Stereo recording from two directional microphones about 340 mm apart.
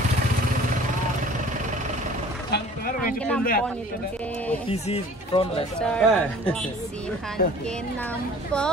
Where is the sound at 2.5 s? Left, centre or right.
Left.